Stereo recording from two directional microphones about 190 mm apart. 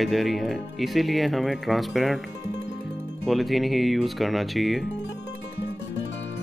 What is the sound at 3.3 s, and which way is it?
Speech, centre (ahead or behind).